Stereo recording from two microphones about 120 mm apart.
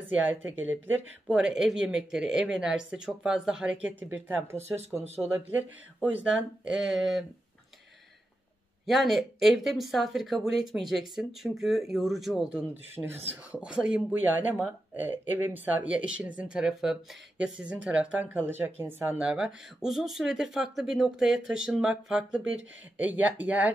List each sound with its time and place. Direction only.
0.1 s speech: 15° right (ahead or behind)
8.8 s speech: centre (ahead or behind)